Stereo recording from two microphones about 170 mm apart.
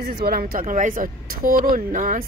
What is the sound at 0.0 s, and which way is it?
Speech, 60° right (ahead or behind).